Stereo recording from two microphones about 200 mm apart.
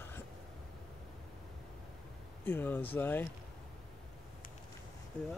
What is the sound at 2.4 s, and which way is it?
Speech, 10° left (ahead or behind).